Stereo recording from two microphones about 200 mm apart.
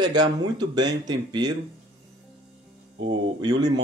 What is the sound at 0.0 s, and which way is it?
Speech, 20° right (ahead or behind).